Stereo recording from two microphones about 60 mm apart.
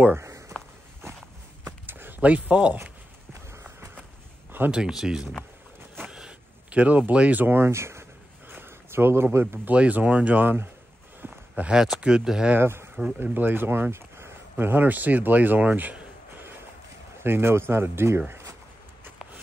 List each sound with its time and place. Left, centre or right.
1.9 s speech: right
3.3 s clip-clop: right
4.6 s speech: centre
6.0 s vehicle: centre
6.8 s speech: right
7.4 s a sound: right
9.7 s speech: right
11.1 s a sound: right
11.7 s speech: centre
12.5 s speech: right
17.2 s speech: right